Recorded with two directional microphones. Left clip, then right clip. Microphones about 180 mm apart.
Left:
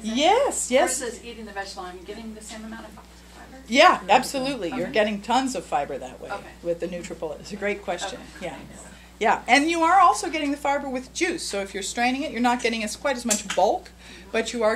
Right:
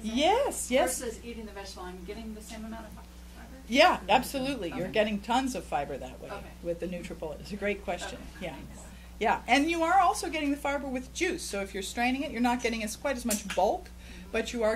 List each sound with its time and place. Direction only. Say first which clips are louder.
0.0 s a woman's voice: left 6 dB; 20° right (ahead or behind)
3.7 s a woman's voice: left 6 dB; 15° right (ahead or behind)